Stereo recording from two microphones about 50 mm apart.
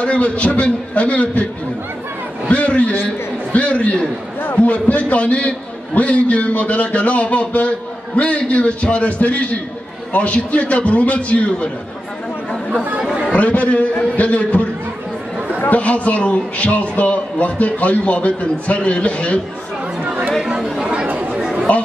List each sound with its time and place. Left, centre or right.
0.0 s a man's voice: left
2.5 s a sound: left
3.5 s a man's voice: left
13.3 s a man's voice: left
20.1 s chatter: right
21.1 s chatter: right
21.4 s chatter: centre